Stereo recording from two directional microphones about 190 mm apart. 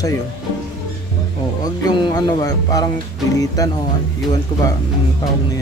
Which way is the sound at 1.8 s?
20° left (ahead or behind).